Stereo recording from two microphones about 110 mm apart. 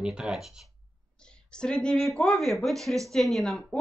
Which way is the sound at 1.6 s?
10° left (ahead or behind).